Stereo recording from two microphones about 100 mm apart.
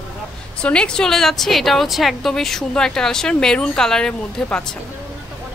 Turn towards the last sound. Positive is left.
turn(degrees=10)  # may be behind; listen again after turning